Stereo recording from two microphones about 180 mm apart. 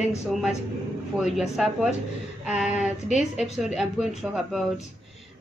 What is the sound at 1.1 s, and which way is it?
A woman's voice, centre (ahead or behind).